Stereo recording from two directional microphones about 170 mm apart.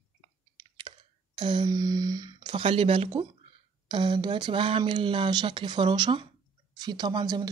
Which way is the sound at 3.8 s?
30° right (ahead or behind).